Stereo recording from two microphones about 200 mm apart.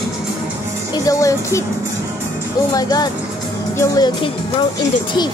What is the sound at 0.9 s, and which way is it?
Music, 15° left (ahead or behind).